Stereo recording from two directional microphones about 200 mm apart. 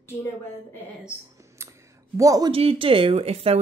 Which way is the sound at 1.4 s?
15° right (ahead or behind).